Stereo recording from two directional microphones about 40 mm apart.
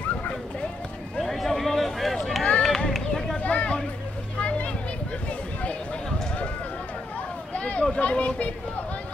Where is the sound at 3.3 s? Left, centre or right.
Left.